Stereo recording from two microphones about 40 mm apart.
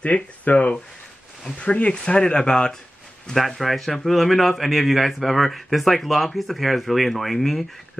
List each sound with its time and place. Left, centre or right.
0.0 s speech: left
3.3 s a man's voice: centre